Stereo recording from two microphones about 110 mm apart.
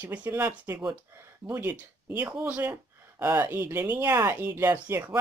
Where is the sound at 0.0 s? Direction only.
15° right (ahead or behind).